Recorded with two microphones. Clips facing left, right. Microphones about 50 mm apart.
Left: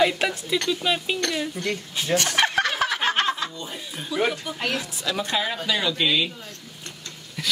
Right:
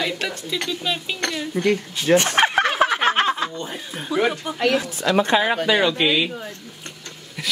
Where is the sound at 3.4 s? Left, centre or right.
Right; by 6.3 s centre.